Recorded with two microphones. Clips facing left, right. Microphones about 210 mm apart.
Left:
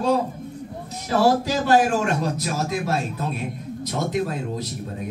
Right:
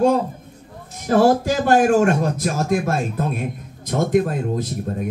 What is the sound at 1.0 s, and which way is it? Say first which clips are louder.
Speech: right 4 dB; 50° right (ahead or behind).